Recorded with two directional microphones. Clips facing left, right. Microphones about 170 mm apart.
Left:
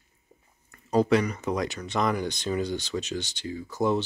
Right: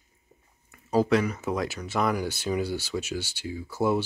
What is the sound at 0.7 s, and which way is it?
Speech, 5° right (ahead or behind).